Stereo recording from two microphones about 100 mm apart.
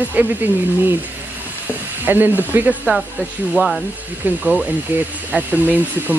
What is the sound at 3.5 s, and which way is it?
Speech, centre (ahead or behind).